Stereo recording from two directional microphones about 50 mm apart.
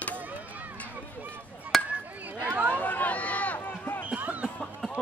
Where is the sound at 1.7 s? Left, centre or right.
Centre.